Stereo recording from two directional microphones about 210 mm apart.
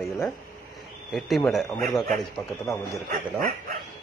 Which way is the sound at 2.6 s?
15° left (ahead or behind).